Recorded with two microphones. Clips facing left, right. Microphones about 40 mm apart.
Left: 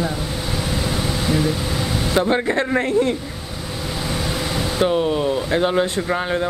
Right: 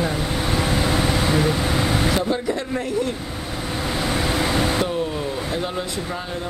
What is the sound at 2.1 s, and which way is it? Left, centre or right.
Speech, left.